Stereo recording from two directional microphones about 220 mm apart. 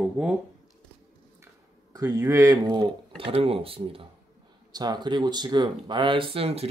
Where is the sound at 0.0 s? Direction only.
5° right (ahead or behind).